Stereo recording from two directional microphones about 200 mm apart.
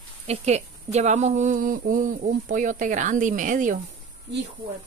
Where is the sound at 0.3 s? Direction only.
35° right (ahead or behind).